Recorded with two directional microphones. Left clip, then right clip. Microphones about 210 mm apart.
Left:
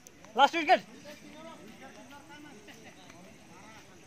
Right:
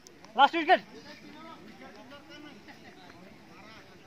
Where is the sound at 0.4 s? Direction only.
55° left (ahead or behind).